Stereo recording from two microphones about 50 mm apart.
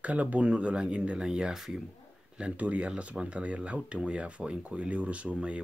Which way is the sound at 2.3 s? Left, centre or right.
Right.